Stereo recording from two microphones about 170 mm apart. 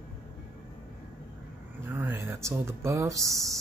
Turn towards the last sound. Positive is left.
turn(degrees=-20)  # may be behind; listen again after turning